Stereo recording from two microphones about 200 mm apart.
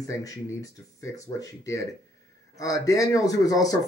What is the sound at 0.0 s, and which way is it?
A man's voice, 15° left (ahead or behind).